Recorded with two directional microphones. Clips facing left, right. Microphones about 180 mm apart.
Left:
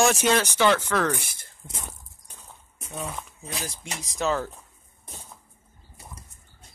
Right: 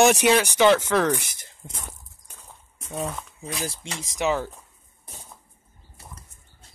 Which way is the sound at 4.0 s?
20° right (ahead or behind).